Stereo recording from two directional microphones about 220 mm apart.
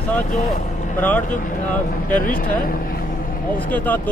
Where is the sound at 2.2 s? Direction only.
40° left (ahead or behind).